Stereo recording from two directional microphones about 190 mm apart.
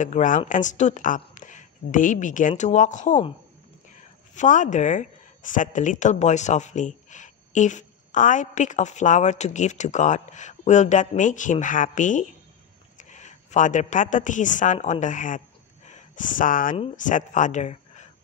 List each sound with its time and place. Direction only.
0.0 s a woman's voice: 40° left (ahead or behind)